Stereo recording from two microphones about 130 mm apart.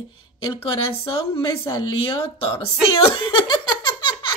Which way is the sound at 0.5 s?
40° left (ahead or behind).